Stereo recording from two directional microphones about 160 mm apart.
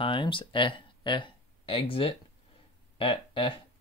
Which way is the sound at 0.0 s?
30° left (ahead or behind).